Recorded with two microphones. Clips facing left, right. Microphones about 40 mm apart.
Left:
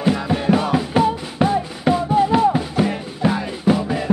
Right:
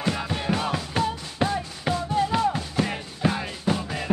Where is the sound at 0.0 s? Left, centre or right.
Centre.